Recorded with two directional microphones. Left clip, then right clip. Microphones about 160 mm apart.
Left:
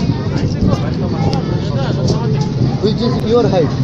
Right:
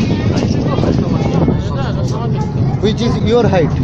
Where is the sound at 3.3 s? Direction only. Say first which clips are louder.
Even; 20° right (ahead or behind).